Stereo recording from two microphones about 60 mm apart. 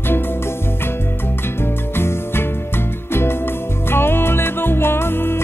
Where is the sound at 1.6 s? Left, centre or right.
Left.